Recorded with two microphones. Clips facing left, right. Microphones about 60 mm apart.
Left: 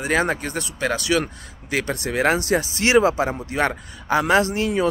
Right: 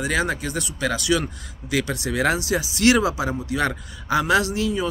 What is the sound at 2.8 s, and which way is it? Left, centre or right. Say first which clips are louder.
Speech: left 1 dB; left.